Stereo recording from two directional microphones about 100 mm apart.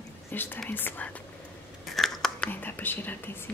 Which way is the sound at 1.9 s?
5° left (ahead or behind).